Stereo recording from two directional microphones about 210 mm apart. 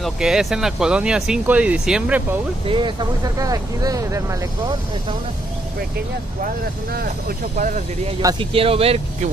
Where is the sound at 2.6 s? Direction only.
25° right (ahead or behind).